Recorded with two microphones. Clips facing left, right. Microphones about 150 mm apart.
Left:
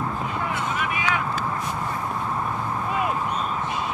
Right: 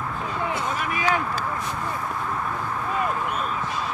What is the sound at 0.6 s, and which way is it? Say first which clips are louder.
Vehicle: even; 35° right (ahead or behind).